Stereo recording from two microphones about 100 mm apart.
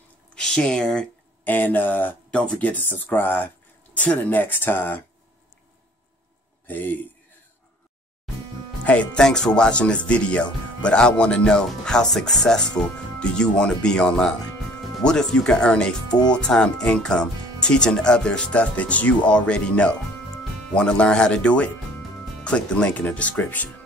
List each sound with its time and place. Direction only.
0.3 s speech: 5° left (ahead or behind)
6.7 s a man's voice: 20° left (ahead or behind)
8.8 s speech: 15° left (ahead or behind)